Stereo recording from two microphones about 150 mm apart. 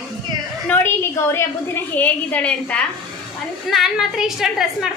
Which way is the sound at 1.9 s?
10° left (ahead or behind).